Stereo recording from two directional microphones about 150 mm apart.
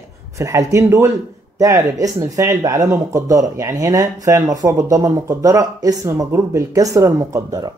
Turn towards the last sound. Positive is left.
turn(degrees=-25)  # may be behind; listen again after turning